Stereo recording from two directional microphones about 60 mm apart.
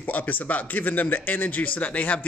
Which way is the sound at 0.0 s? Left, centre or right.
Left.